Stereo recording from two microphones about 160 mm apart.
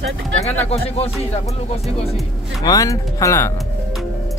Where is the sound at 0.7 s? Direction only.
40° left (ahead or behind).